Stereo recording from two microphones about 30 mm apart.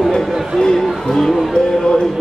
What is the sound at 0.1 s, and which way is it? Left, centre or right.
Chatter, left.